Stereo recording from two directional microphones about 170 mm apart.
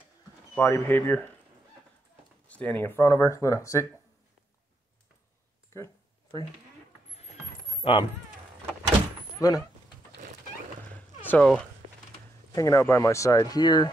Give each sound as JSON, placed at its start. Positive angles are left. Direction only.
{"t": 0.6, "sound": "speech", "side_deg": 10}
{"t": 2.4, "sound": "speech", "side_deg": 10}
{"t": 7.8, "sound": "speech", "side_deg": 30}
{"t": 9.4, "sound": "speech", "side_deg": 20}
{"t": 11.2, "sound": "speech", "side_deg": 5}
{"t": 12.5, "sound": "speech", "side_deg": 20}